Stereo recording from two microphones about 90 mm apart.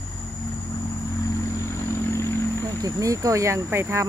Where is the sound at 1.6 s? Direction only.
30° left (ahead or behind).